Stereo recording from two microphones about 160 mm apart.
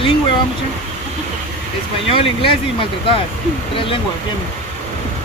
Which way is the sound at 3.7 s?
35° left (ahead or behind).